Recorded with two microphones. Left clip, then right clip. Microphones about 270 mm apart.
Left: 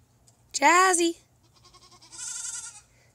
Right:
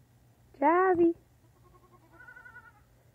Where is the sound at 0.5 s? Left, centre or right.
Left.